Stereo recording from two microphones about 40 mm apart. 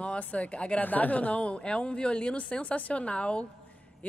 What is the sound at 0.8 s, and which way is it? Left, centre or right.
Speech, left.